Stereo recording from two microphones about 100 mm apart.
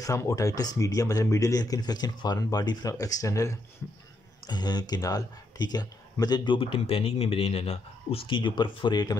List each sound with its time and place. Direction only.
0.0 s speech: 35° left (ahead or behind)
4.5 s speech: 45° left (ahead or behind)